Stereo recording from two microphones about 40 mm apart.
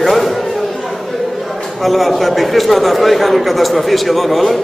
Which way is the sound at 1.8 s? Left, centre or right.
Centre.